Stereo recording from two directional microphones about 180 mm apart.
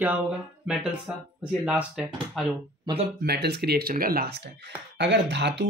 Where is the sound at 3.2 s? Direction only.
60° right (ahead or behind).